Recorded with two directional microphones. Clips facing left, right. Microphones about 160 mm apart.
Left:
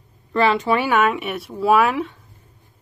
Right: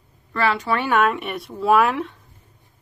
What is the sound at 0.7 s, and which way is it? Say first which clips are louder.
Speech: left 1 dB; 5° left (ahead or behind).